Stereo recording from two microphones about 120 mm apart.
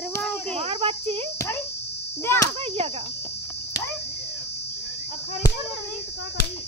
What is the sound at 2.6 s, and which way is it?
Speech, 55° right (ahead or behind).